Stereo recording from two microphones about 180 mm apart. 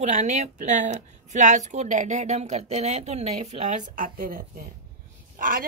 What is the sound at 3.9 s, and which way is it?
Speech, 50° right (ahead or behind).